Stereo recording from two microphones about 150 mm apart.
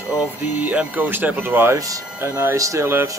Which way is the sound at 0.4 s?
10° right (ahead or behind).